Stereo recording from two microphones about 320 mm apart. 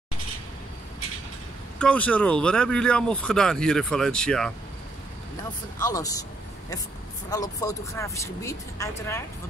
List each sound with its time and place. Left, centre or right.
1.8 s speech: centre
5.9 s speech: centre
7.2 s speech: centre